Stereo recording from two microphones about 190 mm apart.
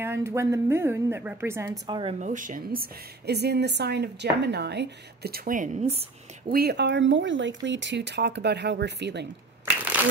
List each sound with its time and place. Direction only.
0.0 s a woman's voice: 15° right (ahead or behind)
2.1 s a woman's voice: 40° right (ahead or behind)
6.5 s a woman's voice: 55° right (ahead or behind)